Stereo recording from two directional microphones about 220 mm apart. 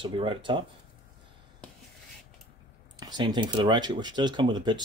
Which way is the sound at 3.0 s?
20° right (ahead or behind).